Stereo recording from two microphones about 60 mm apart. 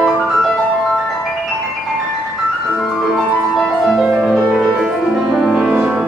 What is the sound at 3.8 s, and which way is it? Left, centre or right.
Music, centre.